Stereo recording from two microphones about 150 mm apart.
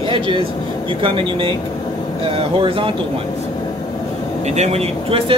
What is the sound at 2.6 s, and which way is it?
Speech, 35° right (ahead or behind).